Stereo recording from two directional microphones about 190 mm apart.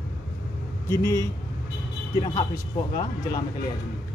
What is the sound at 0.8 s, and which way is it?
A man's voice, 15° left (ahead or behind).